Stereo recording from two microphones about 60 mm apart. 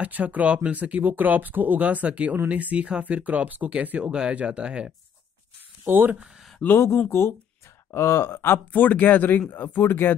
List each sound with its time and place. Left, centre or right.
0.0 s speech: right
5.9 s speech: right
6.6 s speech: left
7.1 s speech: left